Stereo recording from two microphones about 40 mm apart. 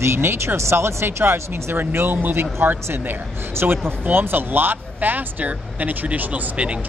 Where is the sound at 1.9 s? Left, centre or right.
Right.